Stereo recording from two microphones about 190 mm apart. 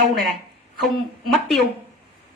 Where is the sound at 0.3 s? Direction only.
Centre (ahead or behind).